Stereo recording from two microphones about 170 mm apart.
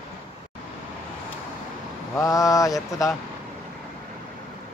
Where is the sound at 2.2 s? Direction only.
20° left (ahead or behind).